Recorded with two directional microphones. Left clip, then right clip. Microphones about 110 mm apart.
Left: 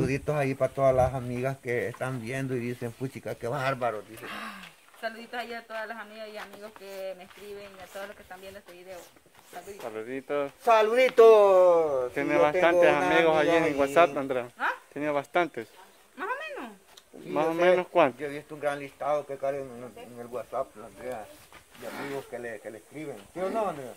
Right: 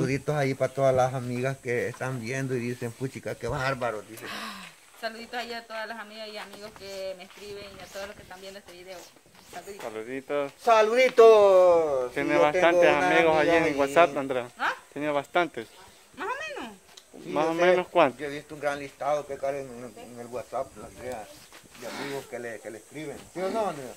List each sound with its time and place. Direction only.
0.0 s speech: 45° left (ahead or behind)
0.5 s speech: 20° left (ahead or behind)
1.4 s speech: 30° left (ahead or behind)
4.2 s speech: 20° right (ahead or behind)
9.8 s speech: 5° left (ahead or behind)
12.1 s speech: 10° left (ahead or behind)
16.2 s a sound: 5° right (ahead or behind)
17.3 s speech: centre (ahead or behind)
18.2 s speech: 15° left (ahead or behind)
21.9 s speech: 20° right (ahead or behind)
22.3 s speech: 15° left (ahead or behind)